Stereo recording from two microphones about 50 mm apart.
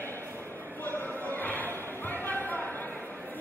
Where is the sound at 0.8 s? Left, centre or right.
Left.